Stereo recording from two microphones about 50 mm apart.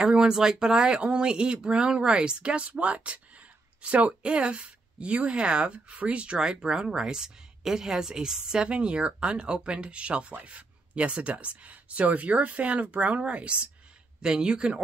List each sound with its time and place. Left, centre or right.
0.0 s speech: centre